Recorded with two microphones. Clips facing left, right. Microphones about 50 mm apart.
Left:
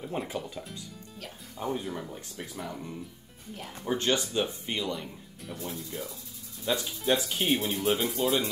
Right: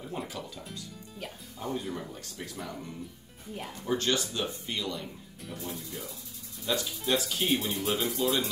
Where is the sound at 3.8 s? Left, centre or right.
Left.